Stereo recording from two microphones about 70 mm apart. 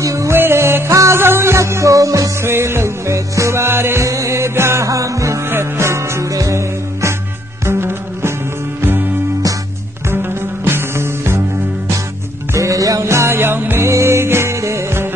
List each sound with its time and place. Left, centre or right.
0.0 s music: right
0.4 s music: right
2.4 s music: right
10.0 s music: right
12.5 s music: right
13.8 s music: right